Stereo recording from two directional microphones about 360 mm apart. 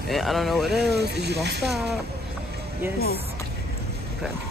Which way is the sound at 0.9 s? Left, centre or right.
Right.